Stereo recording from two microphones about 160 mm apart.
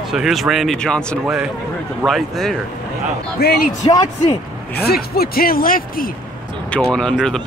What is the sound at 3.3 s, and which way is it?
Speech, 75° left (ahead or behind).